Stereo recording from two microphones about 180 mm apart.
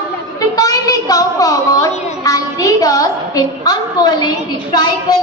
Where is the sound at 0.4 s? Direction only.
20° left (ahead or behind).